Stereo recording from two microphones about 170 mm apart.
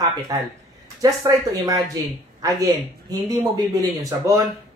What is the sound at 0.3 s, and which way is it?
Speech, 20° right (ahead or behind).